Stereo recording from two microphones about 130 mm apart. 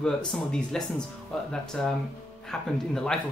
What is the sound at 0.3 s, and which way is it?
Speech, 5° left (ahead or behind).